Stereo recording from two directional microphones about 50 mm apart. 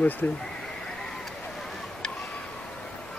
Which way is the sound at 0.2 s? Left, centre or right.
Left.